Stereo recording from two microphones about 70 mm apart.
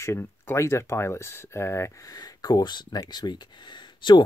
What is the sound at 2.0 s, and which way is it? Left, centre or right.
Speech, left.